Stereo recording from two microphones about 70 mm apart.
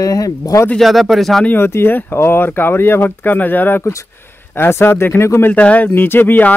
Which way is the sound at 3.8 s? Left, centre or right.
Left.